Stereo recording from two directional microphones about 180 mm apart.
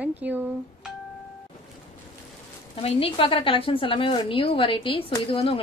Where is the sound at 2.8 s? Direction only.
30° left (ahead or behind).